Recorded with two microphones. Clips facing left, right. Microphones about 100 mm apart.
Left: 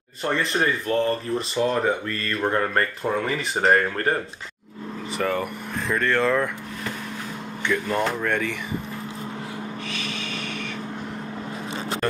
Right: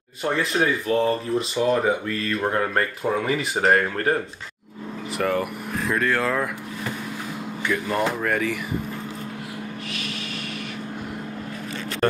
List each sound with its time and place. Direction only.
0.2 s speech: 5° right (ahead or behind)
7.6 s speech: 5° right (ahead or behind)
12.0 s music: 35° right (ahead or behind)